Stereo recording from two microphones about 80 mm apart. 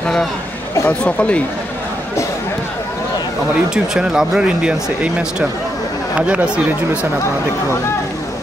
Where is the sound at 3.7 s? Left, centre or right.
Centre.